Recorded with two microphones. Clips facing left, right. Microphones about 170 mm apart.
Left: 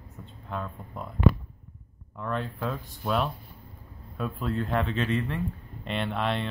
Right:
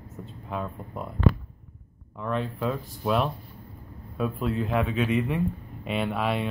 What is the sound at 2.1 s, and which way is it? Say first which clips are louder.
Speech: right 3 dB; centre (ahead or behind).